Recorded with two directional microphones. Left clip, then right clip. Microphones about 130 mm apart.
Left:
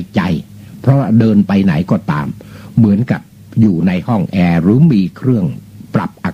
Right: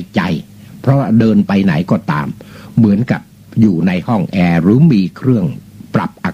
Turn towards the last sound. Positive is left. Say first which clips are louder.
# right 1 dB
turn(degrees=-25)  # may be behind; listen again after turning